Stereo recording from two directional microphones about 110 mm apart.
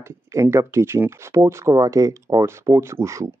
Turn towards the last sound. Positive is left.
turn(degrees=-25)  # may be behind; listen again after turning